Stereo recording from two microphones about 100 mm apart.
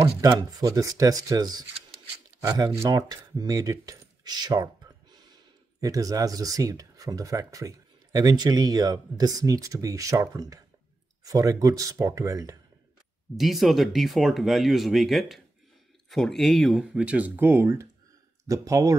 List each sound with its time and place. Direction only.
0.0 s speech: 35° right (ahead or behind)
5.8 s speech: 35° right (ahead or behind)
13.4 s speech: centre (ahead or behind)
17.5 s speech: 25° right (ahead or behind)